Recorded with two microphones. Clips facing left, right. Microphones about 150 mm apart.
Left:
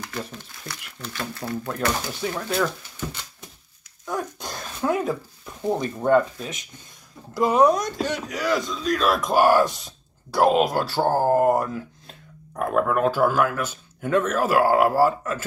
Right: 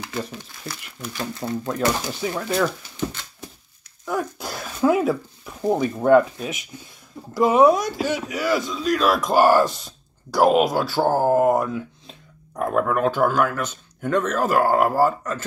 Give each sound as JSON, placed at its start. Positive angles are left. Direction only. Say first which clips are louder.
{"t": 0.0, "sound": "a sound", "louder": "right 3 dB", "side_deg": -5}
{"t": 0.9, "sound": "speech", "louder": "right 2 dB", "side_deg": -15}
{"t": 2.1, "sound": "speech", "louder": "right 2 dB", "side_deg": -5}
{"t": 4.0, "sound": "dog", "louder": "right 3 dB", "side_deg": -5}
{"t": 5.7, "sound": "speech", "louder": "right 4 dB", "side_deg": -10}